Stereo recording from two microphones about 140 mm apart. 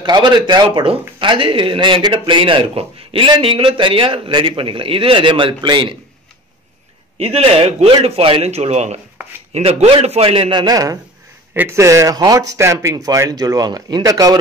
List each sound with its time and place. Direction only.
0.0 s a man's voice: 30° right (ahead or behind)
7.2 s a man's voice: 50° right (ahead or behind)
10.6 s speech: 25° right (ahead or behind)